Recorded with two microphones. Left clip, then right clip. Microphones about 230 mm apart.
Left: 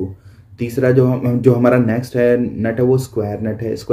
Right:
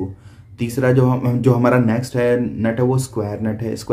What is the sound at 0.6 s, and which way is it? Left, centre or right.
Speech, centre.